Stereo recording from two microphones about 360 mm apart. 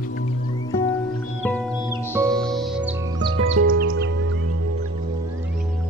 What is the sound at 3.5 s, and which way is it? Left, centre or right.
Music, right.